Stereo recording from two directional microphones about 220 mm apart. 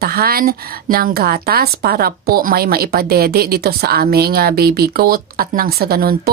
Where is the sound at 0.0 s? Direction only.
45° right (ahead or behind).